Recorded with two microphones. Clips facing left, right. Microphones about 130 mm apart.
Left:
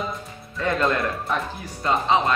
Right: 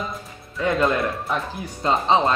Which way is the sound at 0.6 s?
10° right (ahead or behind).